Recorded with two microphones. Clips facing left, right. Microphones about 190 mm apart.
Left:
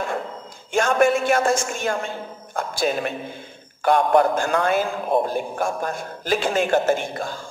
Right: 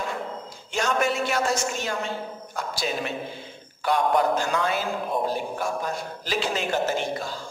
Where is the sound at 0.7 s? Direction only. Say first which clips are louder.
Left 7 dB; 50° left (ahead or behind).